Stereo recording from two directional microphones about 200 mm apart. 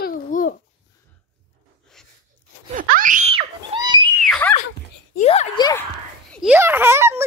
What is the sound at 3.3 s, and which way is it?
Screaming, 25° right (ahead or behind).